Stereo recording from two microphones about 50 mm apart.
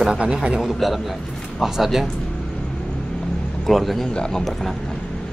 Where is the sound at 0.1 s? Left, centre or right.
Centre.